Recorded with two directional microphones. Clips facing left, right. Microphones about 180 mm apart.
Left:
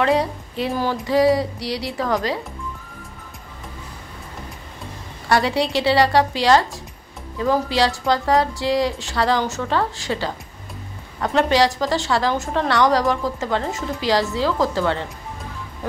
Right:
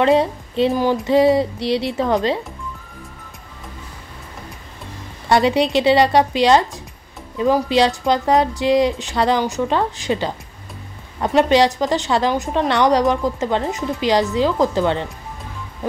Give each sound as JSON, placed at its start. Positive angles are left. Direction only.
{"t": 0.0, "sound": "a woman's voice", "side_deg": -25}
{"t": 5.3, "sound": "a woman's voice", "side_deg": -20}